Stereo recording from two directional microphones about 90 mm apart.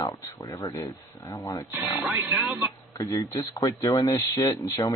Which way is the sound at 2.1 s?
20° right (ahead or behind).